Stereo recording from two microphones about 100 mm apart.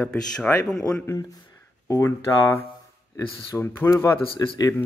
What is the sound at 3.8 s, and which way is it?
Speech, 25° left (ahead or behind).